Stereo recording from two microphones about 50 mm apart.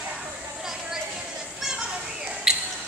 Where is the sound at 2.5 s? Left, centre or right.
Centre.